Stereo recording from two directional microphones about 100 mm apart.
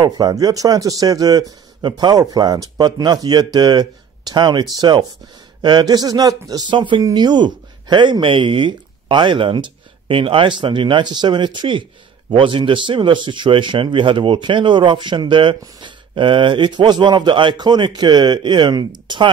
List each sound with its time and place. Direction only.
0.0 s speech: 40° right (ahead or behind)
6.7 s speech: 55° right (ahead or behind)